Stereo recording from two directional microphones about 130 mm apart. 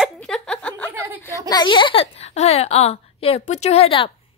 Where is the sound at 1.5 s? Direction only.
35° left (ahead or behind).